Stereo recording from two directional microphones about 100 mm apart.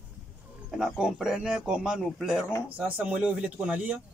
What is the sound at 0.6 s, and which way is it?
A man's voice, 5° right (ahead or behind).